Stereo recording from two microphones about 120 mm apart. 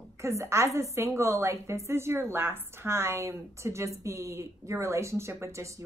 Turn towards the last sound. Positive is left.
turn(degrees=-25)  # may be behind; listen again after turning